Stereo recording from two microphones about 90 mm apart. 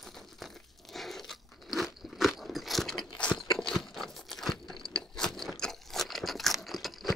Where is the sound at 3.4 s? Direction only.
5° left (ahead or behind).